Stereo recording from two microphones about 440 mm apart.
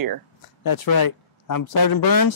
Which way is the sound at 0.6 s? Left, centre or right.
Left.